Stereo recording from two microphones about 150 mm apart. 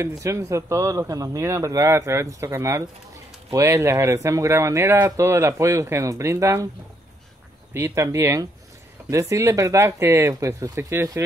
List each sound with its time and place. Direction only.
0.2 s speech: 20° right (ahead or behind)
7.7 s speech: 20° right (ahead or behind)